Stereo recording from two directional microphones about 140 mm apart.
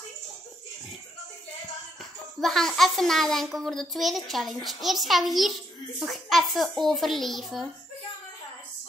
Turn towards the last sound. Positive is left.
turn(degrees=0)  # may be behind; listen again after turning